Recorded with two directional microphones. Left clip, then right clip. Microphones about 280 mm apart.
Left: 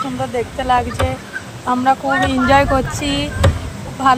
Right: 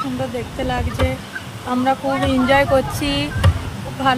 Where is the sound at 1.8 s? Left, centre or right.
Centre.